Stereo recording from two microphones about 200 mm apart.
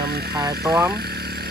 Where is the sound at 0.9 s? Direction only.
50° right (ahead or behind).